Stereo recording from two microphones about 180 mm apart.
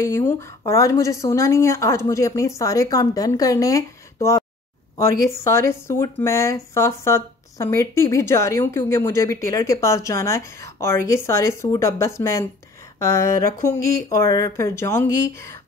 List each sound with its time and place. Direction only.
0.0 s speech: 15° left (ahead or behind)